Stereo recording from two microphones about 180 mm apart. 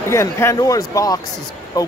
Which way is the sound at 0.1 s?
15° left (ahead or behind).